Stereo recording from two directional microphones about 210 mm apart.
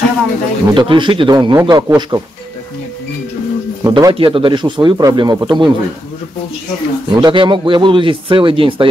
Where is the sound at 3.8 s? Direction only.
20° right (ahead or behind).